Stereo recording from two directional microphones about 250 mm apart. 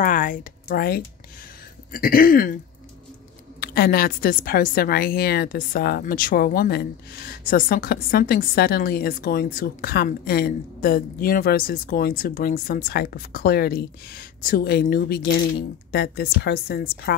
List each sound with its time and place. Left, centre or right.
0.0 s a woman's voice: left
3.6 s a woman's voice: left